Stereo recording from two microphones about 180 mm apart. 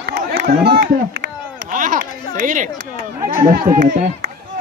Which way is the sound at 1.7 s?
45° right (ahead or behind).